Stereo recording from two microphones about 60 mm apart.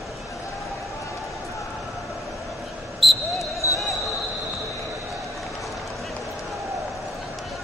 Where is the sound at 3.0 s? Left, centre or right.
Centre.